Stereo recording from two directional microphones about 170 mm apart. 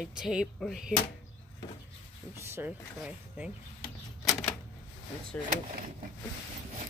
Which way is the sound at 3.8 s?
Centre (ahead or behind).